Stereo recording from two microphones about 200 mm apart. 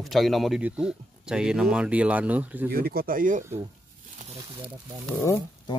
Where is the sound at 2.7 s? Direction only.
50° right (ahead or behind).